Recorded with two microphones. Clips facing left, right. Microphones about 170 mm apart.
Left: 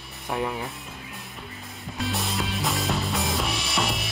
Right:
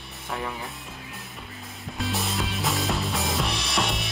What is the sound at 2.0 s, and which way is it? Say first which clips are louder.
Music: even; centre (ahead or behind).